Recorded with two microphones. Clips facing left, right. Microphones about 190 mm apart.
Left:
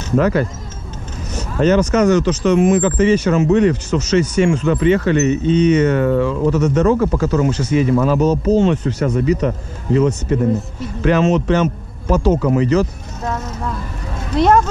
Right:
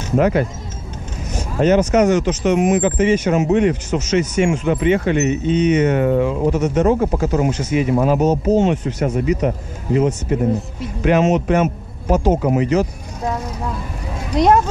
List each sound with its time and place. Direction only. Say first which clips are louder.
0.2 s speech: right 2 dB; 15° right (ahead or behind)
6.0 s speech: left 1 dB; 20° right (ahead or behind)
6.5 s speech: left 2 dB; 10° right (ahead or behind)
6.9 s speech: left 1 dB; 25° right (ahead or behind)
7.2 s speech: left 2 dB; 10° right (ahead or behind)